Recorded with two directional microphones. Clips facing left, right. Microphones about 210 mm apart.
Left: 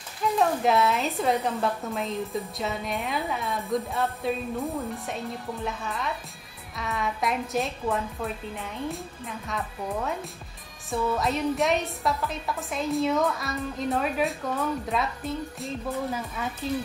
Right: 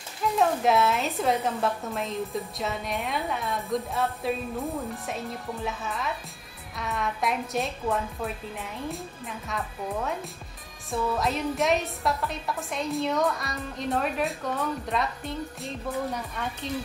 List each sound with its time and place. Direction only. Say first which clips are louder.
0.2 s a woman's voice: even; centre (ahead or behind)